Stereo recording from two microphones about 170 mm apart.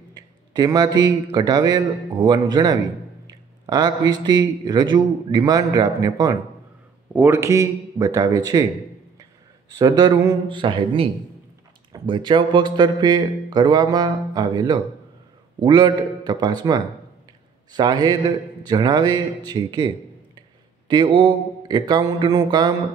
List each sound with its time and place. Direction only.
0.5 s a man's voice: 25° right (ahead or behind)
9.7 s a man's voice: 25° right (ahead or behind)
20.9 s a man's voice: 30° right (ahead or behind)